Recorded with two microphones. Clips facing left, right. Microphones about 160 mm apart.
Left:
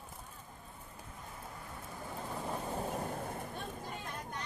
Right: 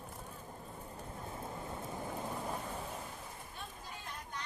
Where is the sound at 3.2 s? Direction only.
55° left (ahead or behind).